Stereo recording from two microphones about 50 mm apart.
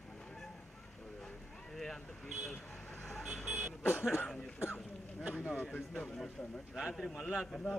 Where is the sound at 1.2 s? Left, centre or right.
Centre.